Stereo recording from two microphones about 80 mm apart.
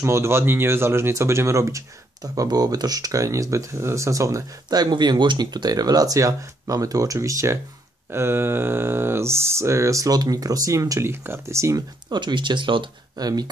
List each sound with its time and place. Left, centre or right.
0.0 s speech: right
4.6 s speech: right
8.1 s speech: right
11.1 s speech: right
12.1 s speech: right
13.2 s speech: right